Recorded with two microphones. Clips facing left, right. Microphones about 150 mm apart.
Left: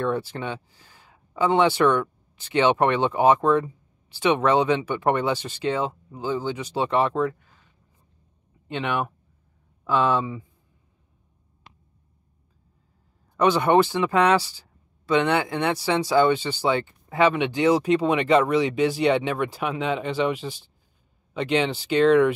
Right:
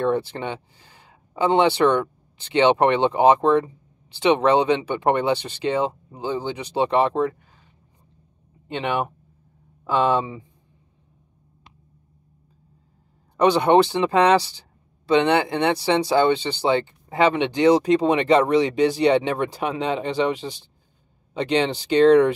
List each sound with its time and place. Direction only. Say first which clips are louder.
0.0 s speech: right 3 dB; 20° right (ahead or behind)
8.6 s speech: right 2 dB; 20° right (ahead or behind)
13.4 s speech: right 2 dB; 20° right (ahead or behind)